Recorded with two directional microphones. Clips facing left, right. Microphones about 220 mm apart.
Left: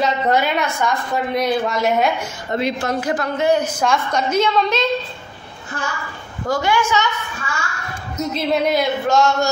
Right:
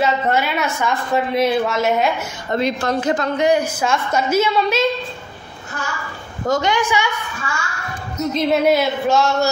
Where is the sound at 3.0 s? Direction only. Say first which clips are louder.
Right 1 dB; 25° right (ahead or behind).